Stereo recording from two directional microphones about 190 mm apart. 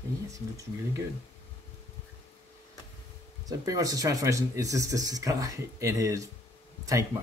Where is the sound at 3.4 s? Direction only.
20° right (ahead or behind).